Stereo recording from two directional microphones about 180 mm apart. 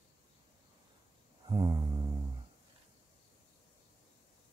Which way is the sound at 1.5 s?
20° right (ahead or behind).